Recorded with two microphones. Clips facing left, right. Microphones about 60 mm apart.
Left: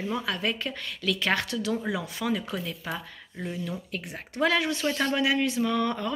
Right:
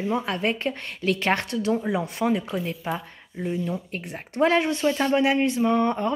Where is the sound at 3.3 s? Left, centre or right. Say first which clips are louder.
Right 7 dB; centre.